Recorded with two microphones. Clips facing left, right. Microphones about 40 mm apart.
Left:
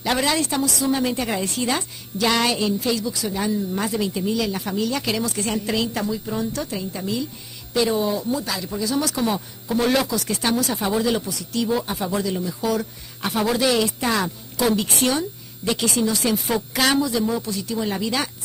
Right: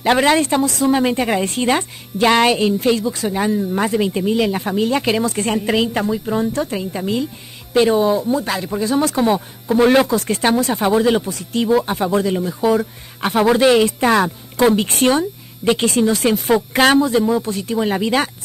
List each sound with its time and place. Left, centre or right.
0.0 s a woman's voice: right
3.3 s a woman's voice: right